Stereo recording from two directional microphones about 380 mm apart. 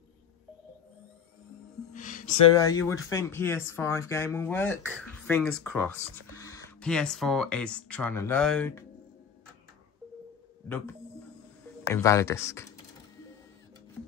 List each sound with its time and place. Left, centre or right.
2.0 s music: left
2.5 s speech: centre
11.9 s speech: centre